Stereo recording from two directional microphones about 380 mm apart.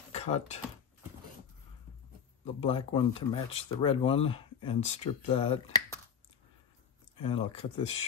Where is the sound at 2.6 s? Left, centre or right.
Centre.